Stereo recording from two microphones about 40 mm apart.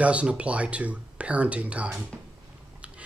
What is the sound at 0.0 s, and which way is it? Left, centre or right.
Speech, right.